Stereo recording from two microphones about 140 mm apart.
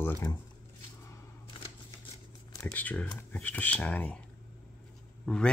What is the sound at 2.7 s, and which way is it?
Speech, 10° left (ahead or behind).